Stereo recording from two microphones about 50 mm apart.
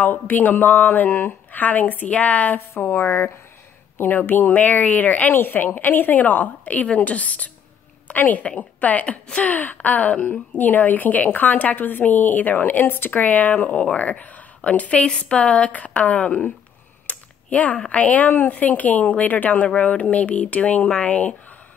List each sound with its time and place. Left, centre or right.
0.0 s a woman's voice: left
2.9 s a woman's voice: left